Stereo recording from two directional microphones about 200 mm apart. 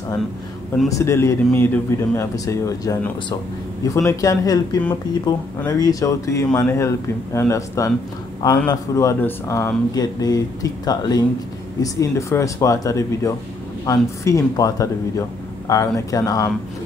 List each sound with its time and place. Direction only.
0.8 s speech: 15° left (ahead or behind)